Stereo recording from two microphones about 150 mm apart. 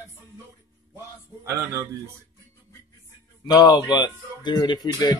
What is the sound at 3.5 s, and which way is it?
Speech, 25° left (ahead or behind).